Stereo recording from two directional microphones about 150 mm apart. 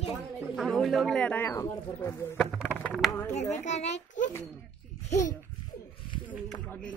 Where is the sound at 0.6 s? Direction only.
Centre (ahead or behind); by 2.1 s 20° left (ahead or behind).